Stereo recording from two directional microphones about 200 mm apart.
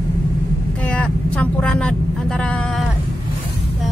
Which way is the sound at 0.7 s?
5° left (ahead or behind).